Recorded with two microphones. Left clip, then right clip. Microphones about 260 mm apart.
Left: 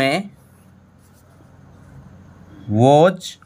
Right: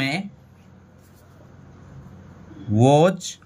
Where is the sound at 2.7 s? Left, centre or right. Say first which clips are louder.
Left 4 dB; centre.